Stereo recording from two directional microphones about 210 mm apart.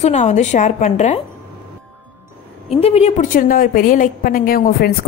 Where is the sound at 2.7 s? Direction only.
30° left (ahead or behind).